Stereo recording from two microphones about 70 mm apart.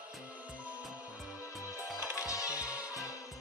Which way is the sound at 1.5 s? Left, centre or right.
Left.